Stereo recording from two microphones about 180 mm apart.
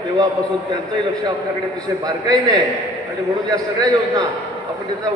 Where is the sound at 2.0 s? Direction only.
20° right (ahead or behind).